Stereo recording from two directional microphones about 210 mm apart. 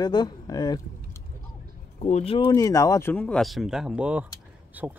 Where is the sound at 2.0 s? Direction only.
30° left (ahead or behind); by 4.9 s 10° right (ahead or behind).